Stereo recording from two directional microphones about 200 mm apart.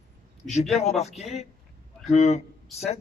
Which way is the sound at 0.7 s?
35° left (ahead or behind).